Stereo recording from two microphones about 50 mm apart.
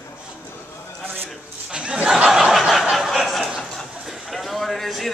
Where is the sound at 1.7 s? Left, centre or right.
Right.